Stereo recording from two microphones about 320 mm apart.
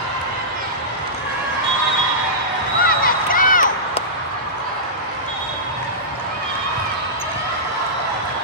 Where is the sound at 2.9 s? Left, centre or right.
Left.